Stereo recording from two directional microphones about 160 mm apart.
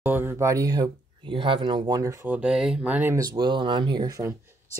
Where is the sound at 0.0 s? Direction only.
10° right (ahead or behind).